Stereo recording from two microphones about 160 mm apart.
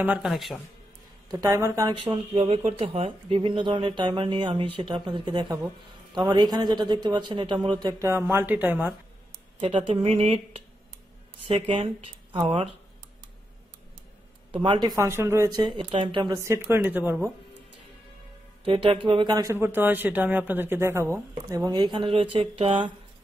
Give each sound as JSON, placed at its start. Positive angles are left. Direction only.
{"t": 0.0, "sound": "a man's voice", "side_deg": -5}
{"t": 1.3, "sound": "speech", "side_deg": -20}
{"t": 2.3, "sound": "speech", "side_deg": -40}
{"t": 8.1, "sound": "speech", "side_deg": -15}
{"t": 9.6, "sound": "speech", "side_deg": -35}
{"t": 14.5, "sound": "speech", "side_deg": -30}
{"t": 18.6, "sound": "speech", "side_deg": -30}